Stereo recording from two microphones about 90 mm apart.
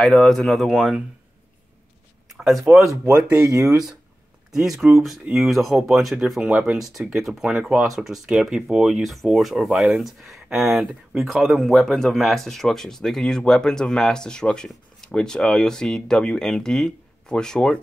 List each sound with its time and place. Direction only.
0.0 s speech: 5° left (ahead or behind)
2.3 s speech: centre (ahead or behind)
3.4 s speech: 35° right (ahead or behind)
4.5 s speech: 5° right (ahead or behind)